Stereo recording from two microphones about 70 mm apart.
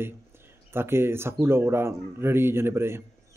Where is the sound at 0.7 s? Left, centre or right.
Right.